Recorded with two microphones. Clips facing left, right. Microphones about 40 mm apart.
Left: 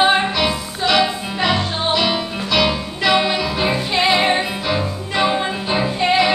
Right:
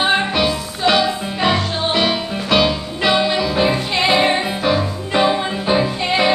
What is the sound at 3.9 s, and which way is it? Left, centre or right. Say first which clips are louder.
Music: left 1 dB; centre.